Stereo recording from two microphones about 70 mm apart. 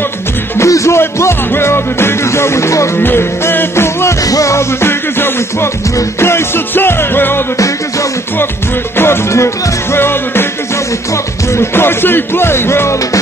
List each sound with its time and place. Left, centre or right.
0.6 s music: left
4.3 s music: left
8.9 s music: left
11.5 s music: left